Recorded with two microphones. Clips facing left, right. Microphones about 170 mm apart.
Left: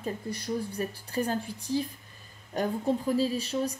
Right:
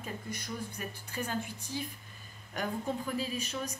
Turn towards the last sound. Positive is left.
turn(degrees=30)  # may be behind; listen again after turning